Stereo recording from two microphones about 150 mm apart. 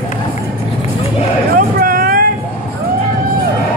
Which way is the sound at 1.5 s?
75° right (ahead or behind).